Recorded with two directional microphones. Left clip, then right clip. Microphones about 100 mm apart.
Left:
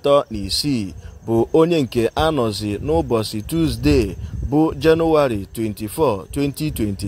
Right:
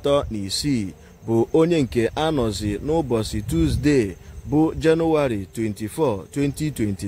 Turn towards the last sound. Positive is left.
turn(degrees=25)  # may be behind; listen again after turning